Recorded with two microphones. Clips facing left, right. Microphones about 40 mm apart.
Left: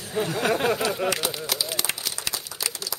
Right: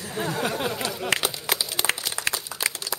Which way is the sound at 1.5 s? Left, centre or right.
Right.